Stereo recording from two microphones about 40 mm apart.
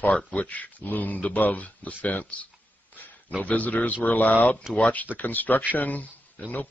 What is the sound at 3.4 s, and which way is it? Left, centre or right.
Speech, left.